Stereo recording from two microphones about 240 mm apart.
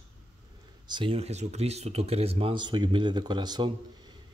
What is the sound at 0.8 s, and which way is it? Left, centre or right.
Speech, centre.